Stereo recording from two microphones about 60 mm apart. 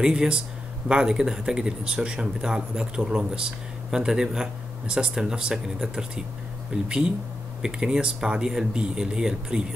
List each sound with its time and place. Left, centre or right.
0.0 s speech: centre